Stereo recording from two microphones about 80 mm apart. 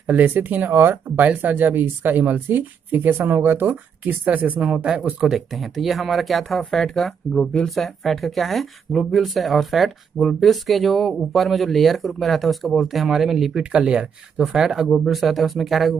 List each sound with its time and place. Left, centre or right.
0.0 s speech: right
5.3 s speech: centre